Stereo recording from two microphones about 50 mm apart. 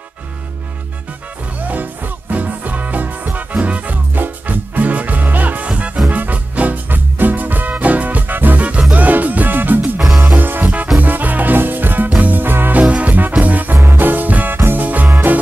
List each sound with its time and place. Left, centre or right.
1.6 s music: right
12.8 s music: right